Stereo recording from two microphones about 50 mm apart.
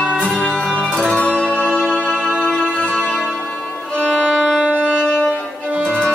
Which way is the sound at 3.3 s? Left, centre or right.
Centre.